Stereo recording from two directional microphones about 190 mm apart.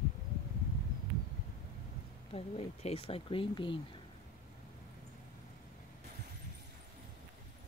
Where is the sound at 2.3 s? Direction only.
30° left (ahead or behind).